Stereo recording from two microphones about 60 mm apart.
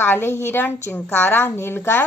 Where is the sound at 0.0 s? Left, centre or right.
Left.